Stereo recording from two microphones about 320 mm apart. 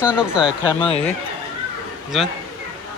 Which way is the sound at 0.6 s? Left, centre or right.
Centre.